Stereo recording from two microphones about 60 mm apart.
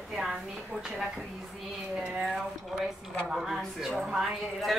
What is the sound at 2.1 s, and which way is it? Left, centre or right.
A woman's voice, centre.